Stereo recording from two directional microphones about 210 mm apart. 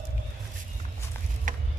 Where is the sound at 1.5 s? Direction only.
40° right (ahead or behind).